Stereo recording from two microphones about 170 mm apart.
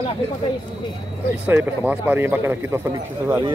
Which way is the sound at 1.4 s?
10° right (ahead or behind).